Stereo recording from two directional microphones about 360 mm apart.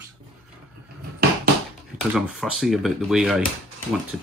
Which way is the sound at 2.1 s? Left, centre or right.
Centre.